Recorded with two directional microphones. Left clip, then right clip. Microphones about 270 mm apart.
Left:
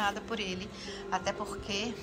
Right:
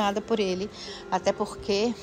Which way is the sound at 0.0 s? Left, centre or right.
Centre.